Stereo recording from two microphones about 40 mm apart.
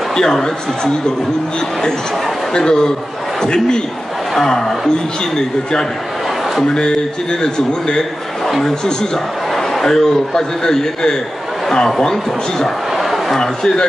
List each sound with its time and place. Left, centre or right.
0.1 s a man's voice: centre
2.5 s a man's voice: centre
9.6 s a man's voice: centre